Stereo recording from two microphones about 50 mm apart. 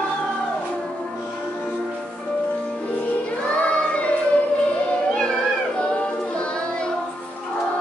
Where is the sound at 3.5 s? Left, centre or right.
Left.